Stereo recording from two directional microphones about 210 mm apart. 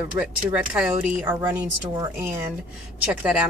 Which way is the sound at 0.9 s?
35° right (ahead or behind).